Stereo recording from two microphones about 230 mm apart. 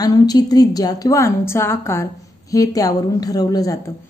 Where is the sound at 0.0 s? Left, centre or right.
Centre.